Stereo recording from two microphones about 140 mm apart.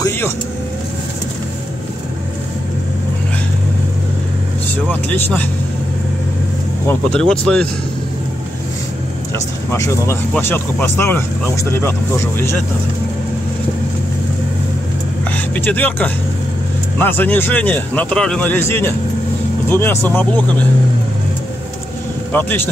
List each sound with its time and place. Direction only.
5.1 s speech: 15° left (ahead or behind)
6.9 s speech: 5° left (ahead or behind)
9.7 s speech: 20° left (ahead or behind)
15.3 s speech: 10° left (ahead or behind)
22.3 s speech: 10° left (ahead or behind)